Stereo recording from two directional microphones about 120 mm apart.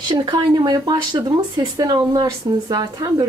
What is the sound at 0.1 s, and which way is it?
Speech, 40° right (ahead or behind).